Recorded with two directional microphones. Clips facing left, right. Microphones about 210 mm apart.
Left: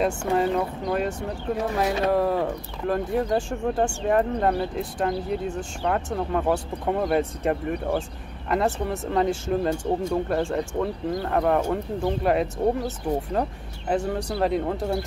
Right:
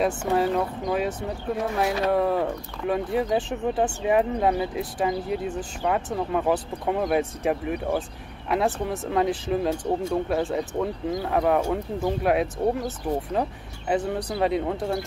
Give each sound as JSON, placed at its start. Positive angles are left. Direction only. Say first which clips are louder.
{"t": 0.0, "sound": "speech", "louder": "even", "side_deg": 0}